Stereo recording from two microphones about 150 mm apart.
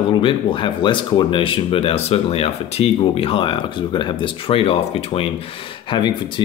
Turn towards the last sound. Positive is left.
turn(degrees=30)  # may be behind; listen again after turning